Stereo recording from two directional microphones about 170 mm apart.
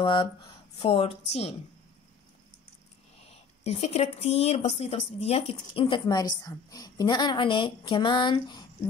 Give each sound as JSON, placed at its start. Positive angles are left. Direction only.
{"t": 0.0, "sound": "a woman's voice", "side_deg": 30}
{"t": 3.6, "sound": "speech", "side_deg": 35}